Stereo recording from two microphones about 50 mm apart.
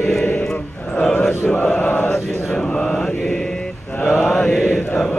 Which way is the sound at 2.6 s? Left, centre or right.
Centre.